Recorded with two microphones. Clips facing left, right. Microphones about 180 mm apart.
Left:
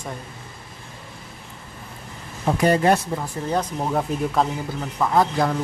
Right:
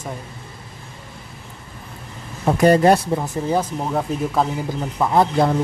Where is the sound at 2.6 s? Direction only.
45° right (ahead or behind).